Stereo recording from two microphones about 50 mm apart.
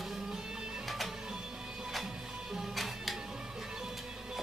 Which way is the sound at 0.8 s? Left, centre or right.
Centre.